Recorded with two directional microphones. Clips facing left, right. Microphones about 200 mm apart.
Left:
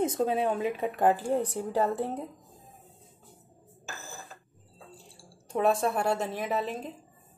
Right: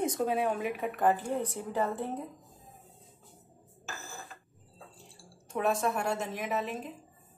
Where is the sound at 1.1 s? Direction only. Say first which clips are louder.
Left 3 dB; 35° left (ahead or behind).